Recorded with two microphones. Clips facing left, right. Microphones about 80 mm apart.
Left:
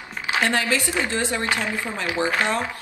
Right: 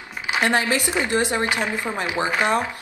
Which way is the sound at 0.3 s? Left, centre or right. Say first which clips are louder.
Right 1 dB; right.